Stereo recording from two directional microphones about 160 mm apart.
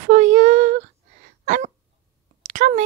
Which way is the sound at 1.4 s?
50° right (ahead or behind).